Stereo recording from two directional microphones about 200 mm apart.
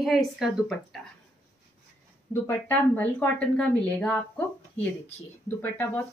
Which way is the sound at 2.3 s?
10° left (ahead or behind).